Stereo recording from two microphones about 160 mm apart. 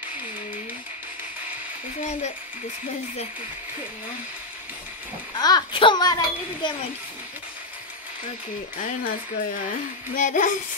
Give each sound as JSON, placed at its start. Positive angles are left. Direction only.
{"t": 5.3, "sound": "speech", "side_deg": 25}
{"t": 8.7, "sound": "speech", "side_deg": 55}